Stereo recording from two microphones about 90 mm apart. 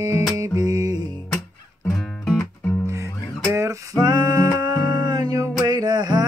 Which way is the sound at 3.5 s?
35° right (ahead or behind).